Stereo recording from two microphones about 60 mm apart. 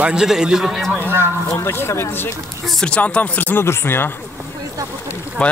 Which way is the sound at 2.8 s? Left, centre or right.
Centre.